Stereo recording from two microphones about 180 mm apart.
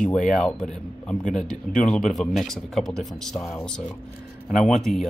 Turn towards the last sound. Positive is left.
turn(degrees=0)  # may be behind; listen again after turning